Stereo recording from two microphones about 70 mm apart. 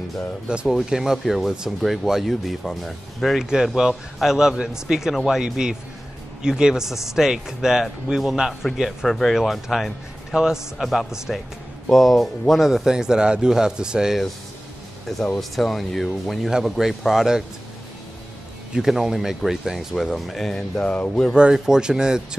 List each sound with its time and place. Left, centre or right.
0.7 s speech: centre
3.4 s a man's voice: centre
15.3 s speech: centre
18.7 s a man's voice: centre
20.7 s speech: centre
21.4 s a man's voice: centre